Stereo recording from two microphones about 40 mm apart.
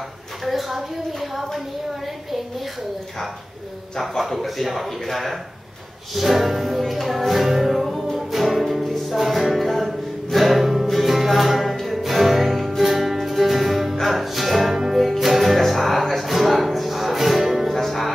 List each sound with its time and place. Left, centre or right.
0.5 s music: centre
4.2 s music: centre